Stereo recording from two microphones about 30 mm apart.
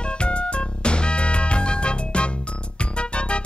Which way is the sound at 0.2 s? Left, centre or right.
Left.